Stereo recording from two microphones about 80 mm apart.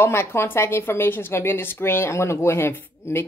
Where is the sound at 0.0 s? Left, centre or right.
Left.